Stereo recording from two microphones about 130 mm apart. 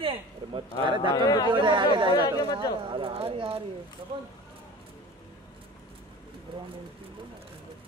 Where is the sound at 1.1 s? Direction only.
30° left (ahead or behind).